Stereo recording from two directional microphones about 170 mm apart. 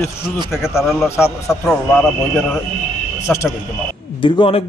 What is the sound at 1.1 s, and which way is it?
Speech, 15° left (ahead or behind).